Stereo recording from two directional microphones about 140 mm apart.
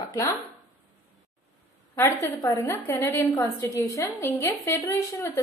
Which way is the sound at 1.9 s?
20° left (ahead or behind).